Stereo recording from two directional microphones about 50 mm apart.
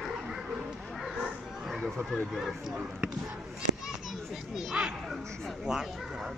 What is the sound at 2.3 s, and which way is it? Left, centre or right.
Speech, centre.